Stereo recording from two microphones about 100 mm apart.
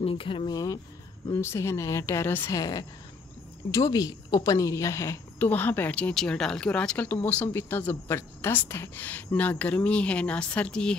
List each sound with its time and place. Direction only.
0.0 s speech: 65° left (ahead or behind)
0.5 s a woman's voice: 35° left (ahead or behind)
3.7 s a woman's voice: 35° left (ahead or behind)
5.5 s speech: 20° left (ahead or behind)